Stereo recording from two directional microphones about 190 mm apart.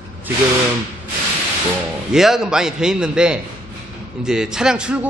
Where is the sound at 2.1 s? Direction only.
Centre (ahead or behind).